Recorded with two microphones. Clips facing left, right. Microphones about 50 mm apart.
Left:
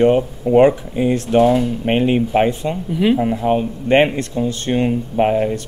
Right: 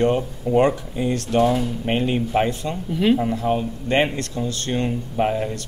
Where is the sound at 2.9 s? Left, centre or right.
Centre.